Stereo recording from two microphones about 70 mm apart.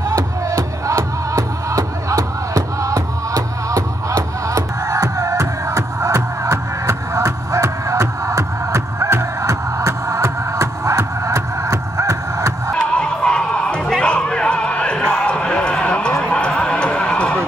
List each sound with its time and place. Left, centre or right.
0.1 s music: right
12.7 s music: centre